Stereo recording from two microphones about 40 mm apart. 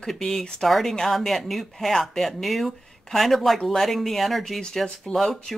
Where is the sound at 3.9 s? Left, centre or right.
Centre.